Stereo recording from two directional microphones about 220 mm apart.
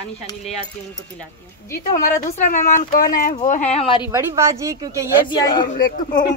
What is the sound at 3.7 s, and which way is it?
Speech, 25° left (ahead or behind).